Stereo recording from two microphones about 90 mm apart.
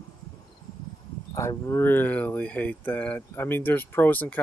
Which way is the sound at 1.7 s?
25° left (ahead or behind).